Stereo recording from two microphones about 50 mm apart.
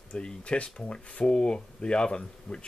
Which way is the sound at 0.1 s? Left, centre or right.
Left.